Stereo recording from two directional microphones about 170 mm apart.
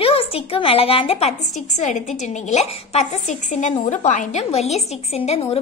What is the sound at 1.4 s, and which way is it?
A woman's voice, 45° left (ahead or behind).